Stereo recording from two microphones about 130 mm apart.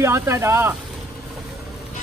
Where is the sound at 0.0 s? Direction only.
20° right (ahead or behind).